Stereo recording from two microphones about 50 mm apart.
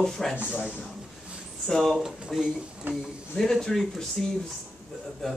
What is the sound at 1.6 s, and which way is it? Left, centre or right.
Speech, centre.